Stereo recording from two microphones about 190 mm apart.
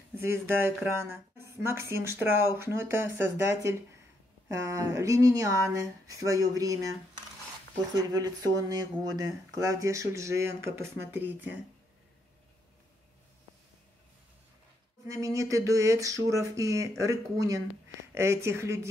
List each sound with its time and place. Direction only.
0.1 s speech: 10° right (ahead or behind)
7.9 s speech: 20° right (ahead or behind)
15.0 s speech: 15° right (ahead or behind)